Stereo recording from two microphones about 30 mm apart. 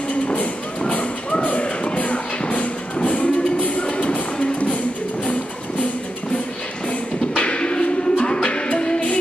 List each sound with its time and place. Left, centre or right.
0.4 s music: left
2.4 s music: left
4.1 s music: left
7.3 s music: left